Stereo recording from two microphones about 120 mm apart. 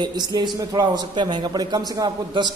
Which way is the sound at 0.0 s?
40° right (ahead or behind).